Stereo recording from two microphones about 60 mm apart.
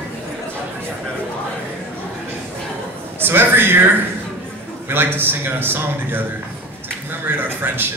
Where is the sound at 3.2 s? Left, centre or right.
Right.